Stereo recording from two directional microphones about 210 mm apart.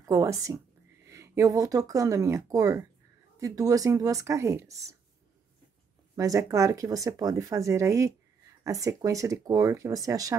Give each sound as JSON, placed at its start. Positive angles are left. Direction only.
{"t": 0.0, "sound": "a woman's voice", "side_deg": -15}
{"t": 6.1, "sound": "speech", "side_deg": -15}